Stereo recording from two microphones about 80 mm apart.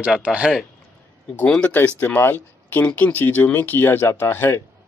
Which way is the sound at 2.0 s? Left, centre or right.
Left.